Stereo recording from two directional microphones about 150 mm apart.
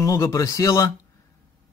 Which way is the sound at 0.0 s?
20° left (ahead or behind).